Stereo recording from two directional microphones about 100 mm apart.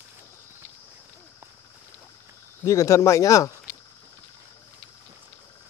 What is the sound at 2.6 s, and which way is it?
Speech, 35° left (ahead or behind).